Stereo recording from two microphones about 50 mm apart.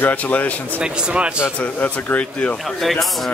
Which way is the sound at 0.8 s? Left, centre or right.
Right.